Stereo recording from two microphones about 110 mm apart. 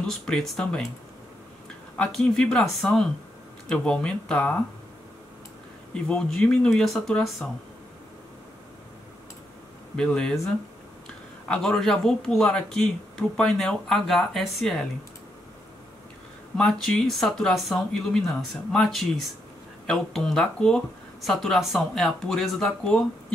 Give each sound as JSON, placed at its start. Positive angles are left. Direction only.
{"t": 0.0, "sound": "speech", "side_deg": 5}
{"t": 2.0, "sound": "speech", "side_deg": 5}
{"t": 5.9, "sound": "speech", "side_deg": 5}
{"t": 9.9, "sound": "speech", "side_deg": 5}
{"t": 16.5, "sound": "speech", "side_deg": 5}